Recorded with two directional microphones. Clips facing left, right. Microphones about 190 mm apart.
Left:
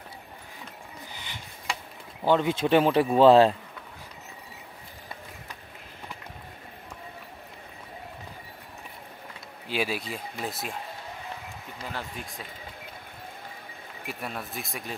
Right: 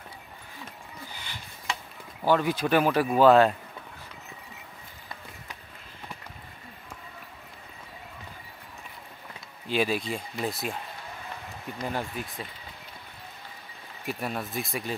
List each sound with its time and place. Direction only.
1.1 s a sound: 20° left (ahead or behind)
2.2 s speech: 20° left (ahead or behind)
9.7 s speech: 5° left (ahead or behind)
11.8 s speech: 15° right (ahead or behind)
14.0 s speech: centre (ahead or behind)